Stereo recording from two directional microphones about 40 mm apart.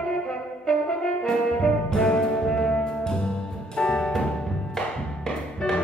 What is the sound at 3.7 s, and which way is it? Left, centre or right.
Music, left.